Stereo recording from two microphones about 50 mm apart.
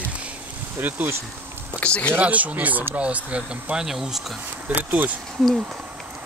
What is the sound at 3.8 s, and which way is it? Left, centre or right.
Speech, centre.